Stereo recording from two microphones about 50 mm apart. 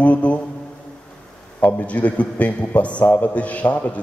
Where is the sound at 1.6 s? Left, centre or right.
Left.